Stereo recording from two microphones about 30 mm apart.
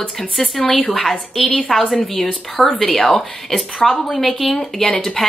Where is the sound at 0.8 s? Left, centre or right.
Centre.